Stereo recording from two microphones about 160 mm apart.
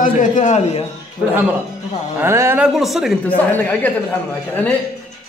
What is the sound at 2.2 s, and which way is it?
Speech, 15° right (ahead or behind).